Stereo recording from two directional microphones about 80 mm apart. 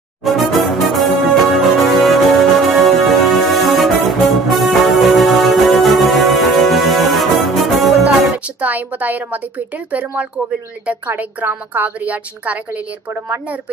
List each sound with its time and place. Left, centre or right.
0.2 s music: centre
8.5 s a woman's voice: centre